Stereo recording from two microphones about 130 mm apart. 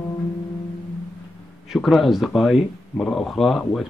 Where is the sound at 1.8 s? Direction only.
Centre (ahead or behind).